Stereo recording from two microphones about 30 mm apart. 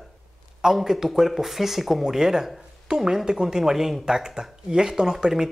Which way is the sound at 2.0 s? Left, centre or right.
Centre.